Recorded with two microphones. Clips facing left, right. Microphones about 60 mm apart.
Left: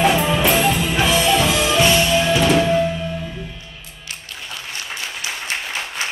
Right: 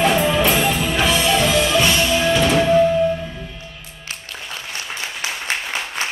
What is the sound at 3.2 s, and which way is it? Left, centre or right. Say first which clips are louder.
Music: left 1 dB; centre.